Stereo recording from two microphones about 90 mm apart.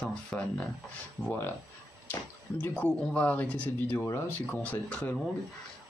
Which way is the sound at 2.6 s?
20° left (ahead or behind).